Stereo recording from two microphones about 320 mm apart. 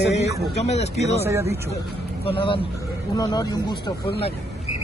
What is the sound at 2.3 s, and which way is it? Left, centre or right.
Speech, centre.